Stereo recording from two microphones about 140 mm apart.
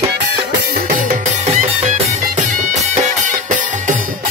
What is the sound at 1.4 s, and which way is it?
Music, 50° right (ahead or behind).